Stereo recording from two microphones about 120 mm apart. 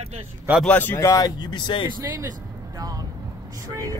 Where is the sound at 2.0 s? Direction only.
30° right (ahead or behind).